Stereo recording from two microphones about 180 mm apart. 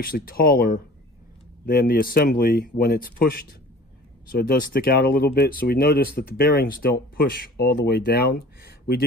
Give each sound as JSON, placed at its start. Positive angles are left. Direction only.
{"t": 0.0, "sound": "speech", "side_deg": 55}